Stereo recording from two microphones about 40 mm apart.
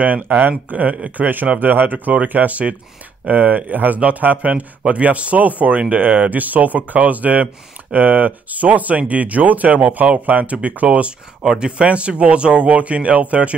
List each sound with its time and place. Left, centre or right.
0.0 s speech: right
11.4 s speech: centre
11.8 s speech: right